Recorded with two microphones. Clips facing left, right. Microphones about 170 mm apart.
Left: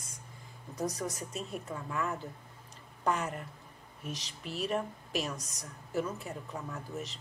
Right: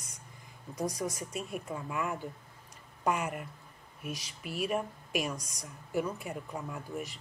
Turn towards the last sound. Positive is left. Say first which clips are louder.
# right 1 dB
turn(degrees=-10)  # may be behind; listen again after turning